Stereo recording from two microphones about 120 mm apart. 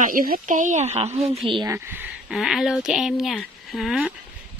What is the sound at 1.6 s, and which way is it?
Speech, 20° right (ahead or behind).